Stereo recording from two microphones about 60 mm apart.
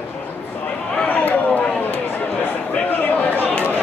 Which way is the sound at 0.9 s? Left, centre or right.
Left.